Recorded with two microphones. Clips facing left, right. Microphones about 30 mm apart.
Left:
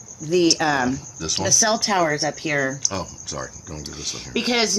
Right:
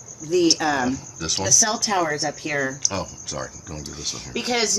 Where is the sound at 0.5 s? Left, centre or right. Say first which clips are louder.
Left 1 dB; left.